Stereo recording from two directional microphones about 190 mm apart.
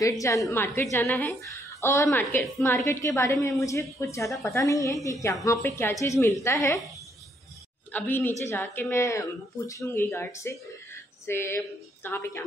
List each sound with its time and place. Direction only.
0.5 s speech: 15° left (ahead or behind)
7.9 s speech: 10° left (ahead or behind)